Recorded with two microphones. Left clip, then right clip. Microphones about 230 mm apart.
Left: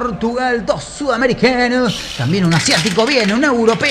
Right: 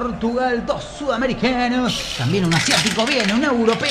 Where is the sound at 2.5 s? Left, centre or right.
Centre.